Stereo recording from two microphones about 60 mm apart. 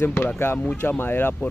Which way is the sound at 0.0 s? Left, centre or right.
Left.